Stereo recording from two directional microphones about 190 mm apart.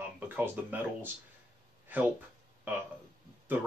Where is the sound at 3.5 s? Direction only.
10° right (ahead or behind).